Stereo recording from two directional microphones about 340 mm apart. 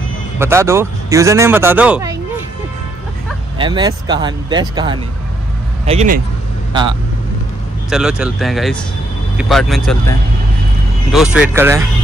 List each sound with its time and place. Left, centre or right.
0.4 s speech: centre
3.5 s speech: centre
7.9 s speech: centre